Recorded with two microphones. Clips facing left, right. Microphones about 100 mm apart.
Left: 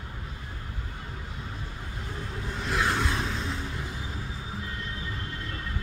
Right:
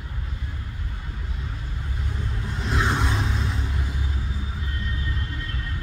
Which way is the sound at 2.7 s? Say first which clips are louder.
Right 2 dB; 20° right (ahead or behind).